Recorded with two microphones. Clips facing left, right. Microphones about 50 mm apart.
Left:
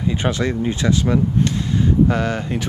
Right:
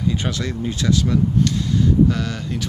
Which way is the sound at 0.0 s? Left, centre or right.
Left.